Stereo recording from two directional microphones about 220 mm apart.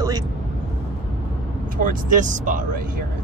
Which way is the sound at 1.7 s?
35° right (ahead or behind).